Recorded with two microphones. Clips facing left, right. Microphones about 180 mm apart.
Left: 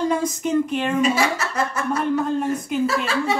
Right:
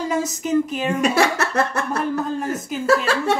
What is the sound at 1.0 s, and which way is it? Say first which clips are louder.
Speech: right 2 dB; 70° right (ahead or behind).